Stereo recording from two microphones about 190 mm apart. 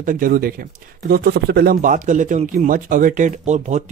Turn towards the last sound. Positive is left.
turn(degrees=-40)  # may be behind; listen again after turning